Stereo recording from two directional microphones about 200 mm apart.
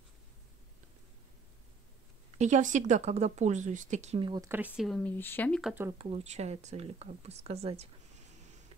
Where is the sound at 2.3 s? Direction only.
35° right (ahead or behind).